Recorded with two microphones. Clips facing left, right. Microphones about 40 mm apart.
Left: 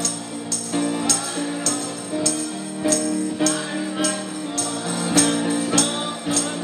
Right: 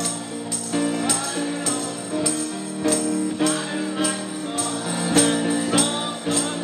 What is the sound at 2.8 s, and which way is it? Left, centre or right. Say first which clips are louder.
Music: even; centre.